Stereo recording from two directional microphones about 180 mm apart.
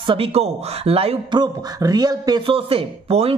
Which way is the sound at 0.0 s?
30° right (ahead or behind).